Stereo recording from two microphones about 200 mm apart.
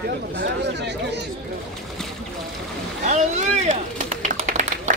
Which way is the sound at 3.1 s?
35° right (ahead or behind).